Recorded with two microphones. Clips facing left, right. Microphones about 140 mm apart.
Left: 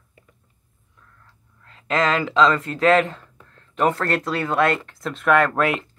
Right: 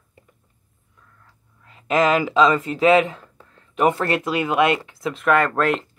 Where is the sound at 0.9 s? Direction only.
5° right (ahead or behind).